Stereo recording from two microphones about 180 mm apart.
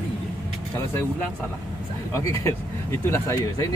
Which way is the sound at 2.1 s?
15° left (ahead or behind).